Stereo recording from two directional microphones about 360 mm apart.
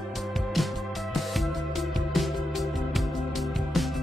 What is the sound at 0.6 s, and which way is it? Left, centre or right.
Music, centre.